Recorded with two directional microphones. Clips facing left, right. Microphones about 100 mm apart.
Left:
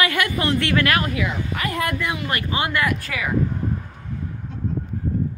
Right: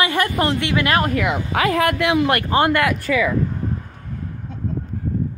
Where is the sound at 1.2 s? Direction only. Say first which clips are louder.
Right 5 dB; 80° right.